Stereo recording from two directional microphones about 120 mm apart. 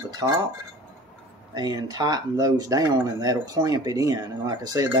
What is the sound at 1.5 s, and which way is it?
Speech, 35° right (ahead or behind).